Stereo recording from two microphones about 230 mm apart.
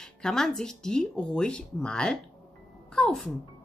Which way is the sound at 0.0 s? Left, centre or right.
Centre.